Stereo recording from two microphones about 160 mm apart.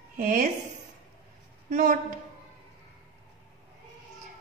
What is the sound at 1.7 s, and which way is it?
Speech, 55° right (ahead or behind).